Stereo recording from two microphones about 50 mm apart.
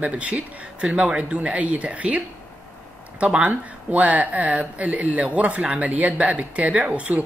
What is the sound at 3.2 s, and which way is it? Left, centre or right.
Speech, right.